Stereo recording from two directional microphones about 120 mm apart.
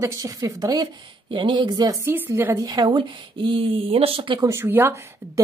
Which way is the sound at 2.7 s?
40° right (ahead or behind).